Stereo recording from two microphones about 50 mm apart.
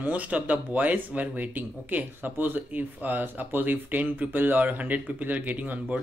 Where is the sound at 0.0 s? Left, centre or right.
Right.